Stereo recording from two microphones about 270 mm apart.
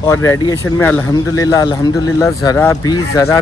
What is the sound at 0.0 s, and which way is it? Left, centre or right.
A man's voice, centre.